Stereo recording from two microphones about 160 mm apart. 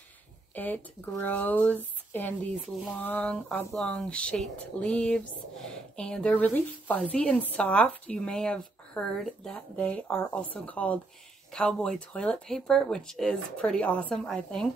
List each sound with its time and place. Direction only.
0.6 s speech: 10° left (ahead or behind)